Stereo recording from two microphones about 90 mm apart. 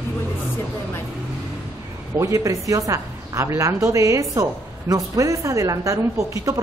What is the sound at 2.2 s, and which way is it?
A woman's voice, 35° right (ahead or behind).